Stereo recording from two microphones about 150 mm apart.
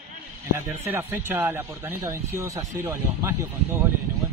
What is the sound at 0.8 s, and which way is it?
Speech, 15° right (ahead or behind).